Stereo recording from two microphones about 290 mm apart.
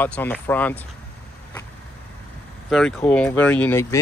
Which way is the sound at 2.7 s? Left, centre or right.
Centre.